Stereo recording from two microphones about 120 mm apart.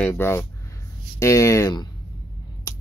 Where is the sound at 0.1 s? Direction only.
20° left (ahead or behind).